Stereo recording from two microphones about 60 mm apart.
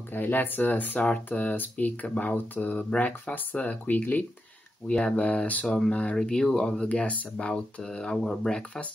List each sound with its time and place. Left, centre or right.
0.1 s speech: left; by 8.8 s centre